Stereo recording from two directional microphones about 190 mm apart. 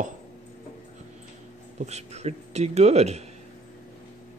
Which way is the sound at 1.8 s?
35° right (ahead or behind).